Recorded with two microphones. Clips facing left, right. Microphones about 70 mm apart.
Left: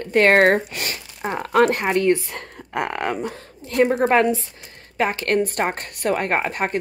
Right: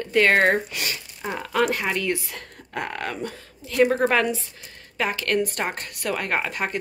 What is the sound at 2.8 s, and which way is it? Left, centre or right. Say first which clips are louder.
Speech: left 5 dB; left.